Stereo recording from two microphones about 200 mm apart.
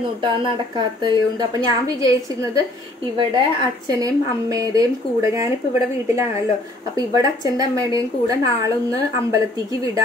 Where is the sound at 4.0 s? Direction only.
15° right (ahead or behind).